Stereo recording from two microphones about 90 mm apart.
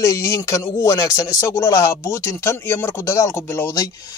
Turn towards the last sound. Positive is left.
turn(degrees=30)  # may be behind; listen again after turning